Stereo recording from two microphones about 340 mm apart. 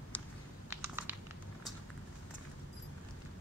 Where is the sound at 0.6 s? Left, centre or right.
Centre.